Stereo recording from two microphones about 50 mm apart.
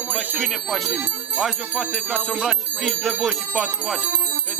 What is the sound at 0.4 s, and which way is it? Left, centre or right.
Speech, centre.